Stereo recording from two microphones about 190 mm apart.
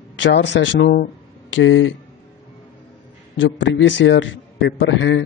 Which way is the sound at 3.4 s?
75° left (ahead or behind).